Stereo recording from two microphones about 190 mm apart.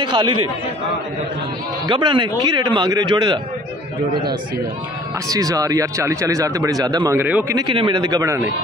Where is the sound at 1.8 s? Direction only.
25° right (ahead or behind).